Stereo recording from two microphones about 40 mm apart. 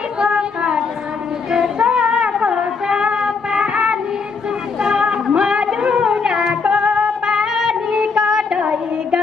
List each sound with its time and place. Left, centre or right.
0.2 s a sound: right
2.4 s child singing: right
4.7 s music: centre